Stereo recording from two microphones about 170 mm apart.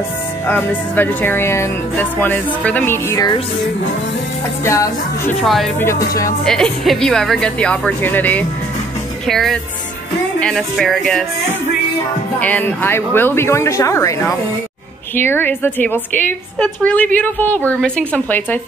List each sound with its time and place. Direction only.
0.5 s music: 10° left (ahead or behind)
4.6 s music: 20° left (ahead or behind)
5.4 s speech: centre (ahead or behind)
5.8 s music: 15° left (ahead or behind)
6.4 s speech: 5° left (ahead or behind)
12.4 s music: 10° left (ahead or behind)